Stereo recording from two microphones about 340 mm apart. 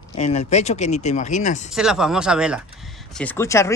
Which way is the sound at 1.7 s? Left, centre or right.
Centre.